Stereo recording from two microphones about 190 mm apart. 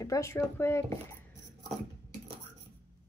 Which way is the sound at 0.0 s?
15° left (ahead or behind).